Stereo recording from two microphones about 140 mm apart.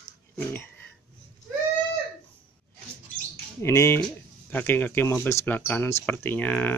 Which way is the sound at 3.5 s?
20° left (ahead or behind).